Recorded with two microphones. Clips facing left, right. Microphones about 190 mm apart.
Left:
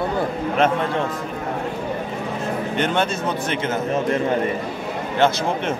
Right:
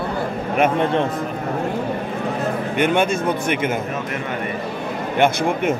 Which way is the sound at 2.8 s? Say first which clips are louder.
Right 5 dB; 10° right (ahead or behind).